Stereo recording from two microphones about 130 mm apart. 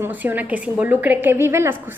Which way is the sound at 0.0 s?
15° right (ahead or behind).